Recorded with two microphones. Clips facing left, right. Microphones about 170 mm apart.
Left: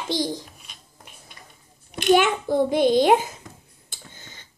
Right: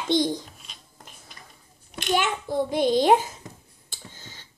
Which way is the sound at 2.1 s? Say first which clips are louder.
Left 7 dB; 15° left (ahead or behind).